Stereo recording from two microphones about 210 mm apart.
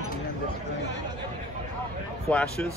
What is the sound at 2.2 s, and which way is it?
Speech, 5° left (ahead or behind).